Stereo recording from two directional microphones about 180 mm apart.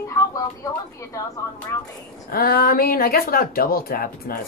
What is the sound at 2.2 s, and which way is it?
Speech, 55° left (ahead or behind).